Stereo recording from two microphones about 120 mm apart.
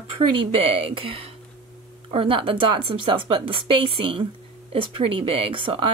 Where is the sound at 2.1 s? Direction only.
45° right (ahead or behind).